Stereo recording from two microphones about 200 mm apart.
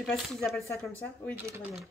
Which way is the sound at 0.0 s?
5° left (ahead or behind).